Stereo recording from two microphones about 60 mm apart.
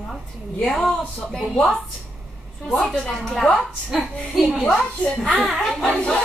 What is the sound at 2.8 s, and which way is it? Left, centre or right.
Speech, centre.